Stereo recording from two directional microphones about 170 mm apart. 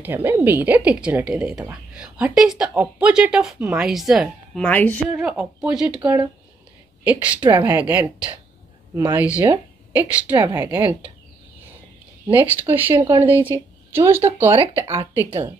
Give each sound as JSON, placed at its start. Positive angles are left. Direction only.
{"t": 0.0, "sound": "a woman's voice", "side_deg": -10}
{"t": 4.6, "sound": "a woman's voice", "side_deg": 10}
{"t": 5.0, "sound": "a woman's voice", "side_deg": -5}
{"t": 7.1, "sound": "speech", "side_deg": -10}
{"t": 8.9, "sound": "speech", "side_deg": -20}
{"t": 12.3, "sound": "speech", "side_deg": -10}